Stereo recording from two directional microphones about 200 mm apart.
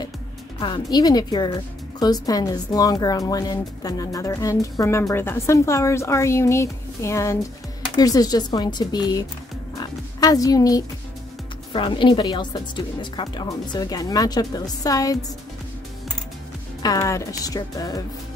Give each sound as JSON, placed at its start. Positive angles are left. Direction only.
{"t": 0.6, "sound": "a woman's voice", "side_deg": 20}
{"t": 9.8, "sound": "oink", "side_deg": 20}
{"t": 11.7, "sound": "speech", "side_deg": 25}
{"t": 16.8, "sound": "a woman's voice", "side_deg": 15}